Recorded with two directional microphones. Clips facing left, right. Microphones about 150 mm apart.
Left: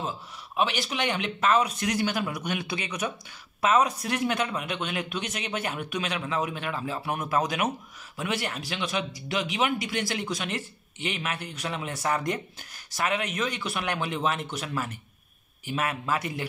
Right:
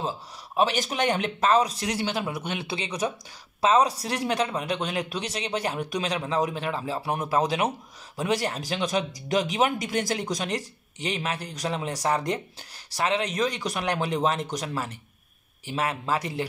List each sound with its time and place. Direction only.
0.6 s speech: 40° right (ahead or behind)